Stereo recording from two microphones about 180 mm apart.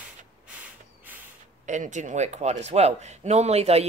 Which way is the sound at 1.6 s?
45° right (ahead or behind).